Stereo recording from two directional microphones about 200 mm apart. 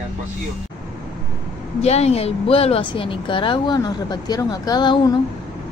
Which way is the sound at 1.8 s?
30° left (ahead or behind).